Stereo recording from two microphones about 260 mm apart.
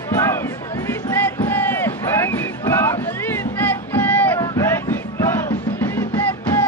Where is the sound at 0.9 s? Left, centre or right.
Centre.